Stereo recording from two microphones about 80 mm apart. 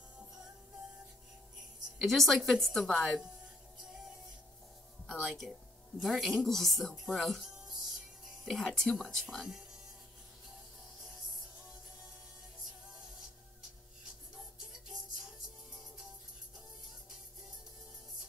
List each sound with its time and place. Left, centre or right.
2.0 s a woman's voice: centre
3.8 s music: centre
5.0 s a sound: centre
5.4 s a woman's voice: centre
9.4 s speech: centre
14.3 s music: centre